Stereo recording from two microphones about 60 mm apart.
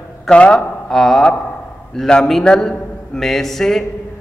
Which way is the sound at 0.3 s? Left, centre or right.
Centre.